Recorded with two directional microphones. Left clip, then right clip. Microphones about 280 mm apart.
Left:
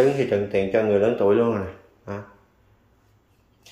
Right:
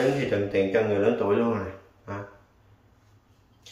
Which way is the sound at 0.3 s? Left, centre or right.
Left.